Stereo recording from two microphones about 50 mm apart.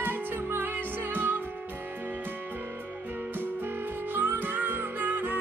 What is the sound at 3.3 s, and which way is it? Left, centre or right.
Music, right.